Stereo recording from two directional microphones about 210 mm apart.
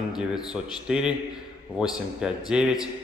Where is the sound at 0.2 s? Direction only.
5° right (ahead or behind).